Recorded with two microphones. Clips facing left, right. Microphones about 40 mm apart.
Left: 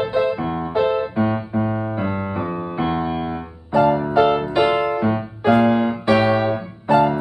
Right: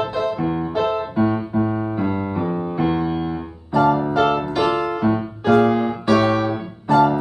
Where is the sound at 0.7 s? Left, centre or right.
Left.